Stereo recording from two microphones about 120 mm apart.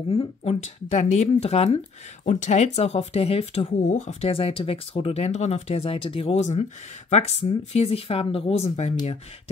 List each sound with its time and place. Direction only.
0.1 s speech: 55° left (ahead or behind)
2.2 s speech: 75° left (ahead or behind)